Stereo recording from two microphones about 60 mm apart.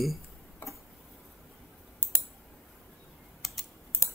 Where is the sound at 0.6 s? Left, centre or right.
Left.